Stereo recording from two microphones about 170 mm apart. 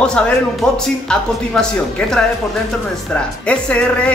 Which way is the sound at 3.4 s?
5° left (ahead or behind).